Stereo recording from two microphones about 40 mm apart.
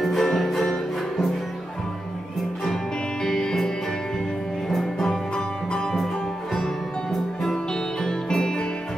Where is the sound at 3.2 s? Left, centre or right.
Centre.